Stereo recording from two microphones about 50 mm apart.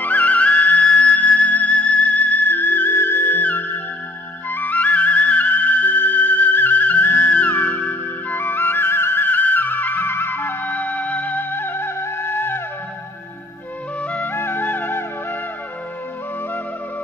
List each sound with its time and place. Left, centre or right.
0.0 s music: left
10.7 s music: left
14.0 s music: left
14.3 s music: left